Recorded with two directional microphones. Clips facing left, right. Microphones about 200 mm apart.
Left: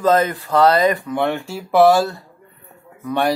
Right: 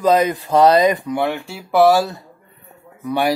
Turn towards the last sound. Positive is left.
turn(degrees=-10)  # may be behind; listen again after turning